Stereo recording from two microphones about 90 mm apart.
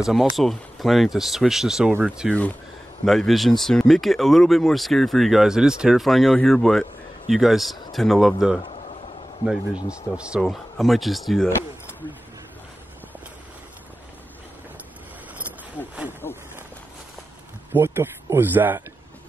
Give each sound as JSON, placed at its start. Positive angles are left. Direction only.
{"t": 0.0, "sound": "speech", "side_deg": 0}
{"t": 3.1, "sound": "speech", "side_deg": 0}
{"t": 9.8, "sound": "speech", "side_deg": -10}
{"t": 10.4, "sound": "speech", "side_deg": 0}
{"t": 16.2, "sound": "a sound", "side_deg": 25}
{"t": 17.7, "sound": "speech", "side_deg": -25}